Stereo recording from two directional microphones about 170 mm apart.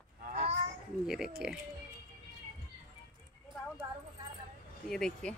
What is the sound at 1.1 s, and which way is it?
Speech, 5° right (ahead or behind).